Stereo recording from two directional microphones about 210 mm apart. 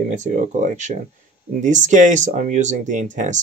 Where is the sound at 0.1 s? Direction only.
35° right (ahead or behind).